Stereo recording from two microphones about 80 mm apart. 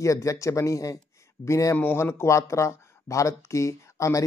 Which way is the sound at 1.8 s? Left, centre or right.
Left.